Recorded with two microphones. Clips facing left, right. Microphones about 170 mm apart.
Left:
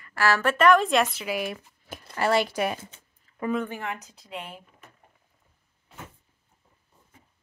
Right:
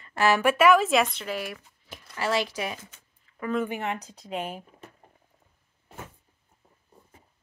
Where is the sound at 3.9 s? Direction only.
35° right (ahead or behind).